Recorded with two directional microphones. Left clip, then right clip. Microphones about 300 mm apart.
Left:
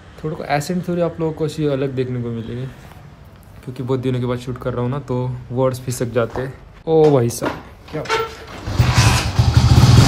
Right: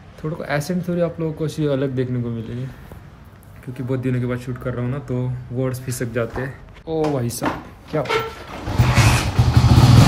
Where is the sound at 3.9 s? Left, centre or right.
Centre.